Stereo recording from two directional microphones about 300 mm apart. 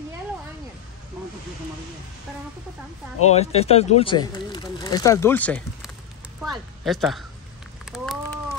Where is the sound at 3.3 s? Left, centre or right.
Left; by 7.2 s centre.